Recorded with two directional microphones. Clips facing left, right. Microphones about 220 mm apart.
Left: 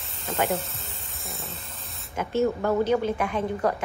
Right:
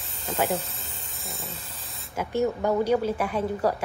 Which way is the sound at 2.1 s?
10° right (ahead or behind).